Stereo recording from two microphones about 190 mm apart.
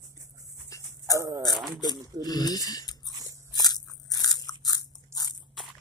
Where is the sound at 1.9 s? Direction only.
20° right (ahead or behind).